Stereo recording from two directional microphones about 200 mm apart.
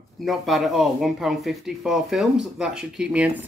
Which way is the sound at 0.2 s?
Centre (ahead or behind).